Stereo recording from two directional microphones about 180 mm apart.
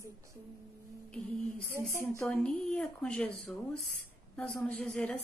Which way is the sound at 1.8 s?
15° right (ahead or behind).